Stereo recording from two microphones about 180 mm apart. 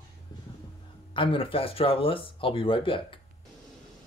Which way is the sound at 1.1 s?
30° left (ahead or behind).